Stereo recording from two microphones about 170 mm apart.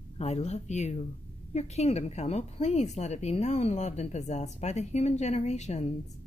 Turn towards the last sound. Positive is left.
turn(degrees=40)  # may be behind; listen again after turning